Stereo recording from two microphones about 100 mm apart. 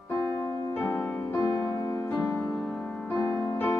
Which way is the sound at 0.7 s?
20° left (ahead or behind).